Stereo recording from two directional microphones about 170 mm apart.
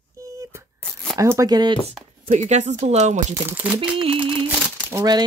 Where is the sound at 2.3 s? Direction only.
45° right (ahead or behind).